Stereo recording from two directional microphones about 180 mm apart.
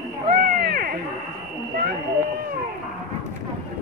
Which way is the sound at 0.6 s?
55° right (ahead or behind).